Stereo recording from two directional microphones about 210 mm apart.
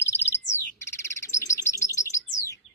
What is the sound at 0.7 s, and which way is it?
Bird, 15° left (ahead or behind).